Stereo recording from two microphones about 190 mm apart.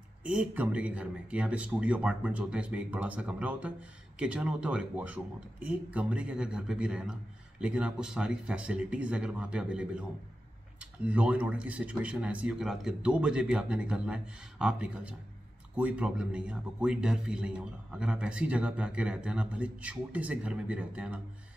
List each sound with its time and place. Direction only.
0.2 s a man's voice: 5° right (ahead or behind)